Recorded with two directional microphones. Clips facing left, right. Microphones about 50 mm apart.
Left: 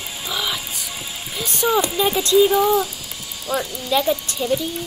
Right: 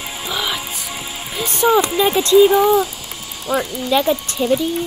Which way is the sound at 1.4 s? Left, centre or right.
Right.